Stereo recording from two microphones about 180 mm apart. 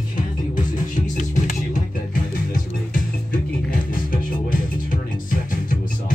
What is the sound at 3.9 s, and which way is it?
Music, 50° left (ahead or behind).